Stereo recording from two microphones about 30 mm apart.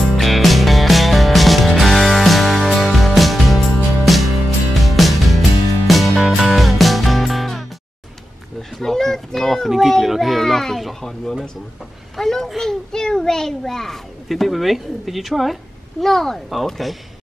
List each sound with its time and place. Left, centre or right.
0.0 s music: centre
8.8 s children playing: centre
9.8 s a sound: centre
14.3 s speech: centre
16.0 s speech: centre